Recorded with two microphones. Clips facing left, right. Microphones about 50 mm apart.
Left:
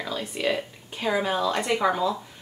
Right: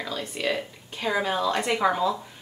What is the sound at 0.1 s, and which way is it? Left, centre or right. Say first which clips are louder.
Speech: left 2 dB; centre.